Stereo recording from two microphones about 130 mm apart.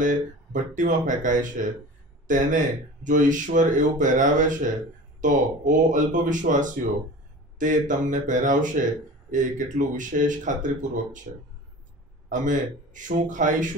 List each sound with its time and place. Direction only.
0.0 s speech: 80° right
12.3 s speech: 80° right